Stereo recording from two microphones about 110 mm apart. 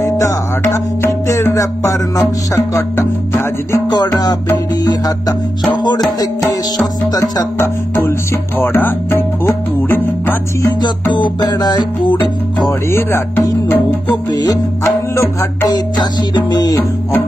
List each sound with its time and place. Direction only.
0.0 s music: 25° left (ahead or behind)
3.0 s speech: 25° left (ahead or behind)
3.9 s music: 40° left (ahead or behind)
7.2 s speech: 25° left (ahead or behind)
8.5 s music: 20° left (ahead or behind)
10.8 s music: 45° left (ahead or behind)
12.9 s speech: 30° left (ahead or behind)
14.3 s music: 35° left (ahead or behind)
15.7 s music: 40° left (ahead or behind)